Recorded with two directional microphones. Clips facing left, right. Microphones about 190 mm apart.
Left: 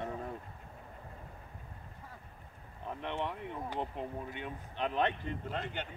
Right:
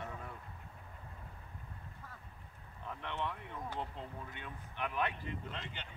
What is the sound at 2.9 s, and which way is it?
Speech, 20° left (ahead or behind).